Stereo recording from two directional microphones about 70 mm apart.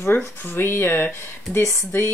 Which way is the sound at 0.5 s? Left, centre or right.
Left.